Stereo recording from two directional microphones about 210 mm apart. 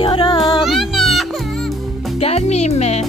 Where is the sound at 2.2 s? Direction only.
30° left (ahead or behind).